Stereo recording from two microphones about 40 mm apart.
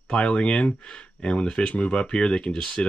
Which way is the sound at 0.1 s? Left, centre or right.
Left.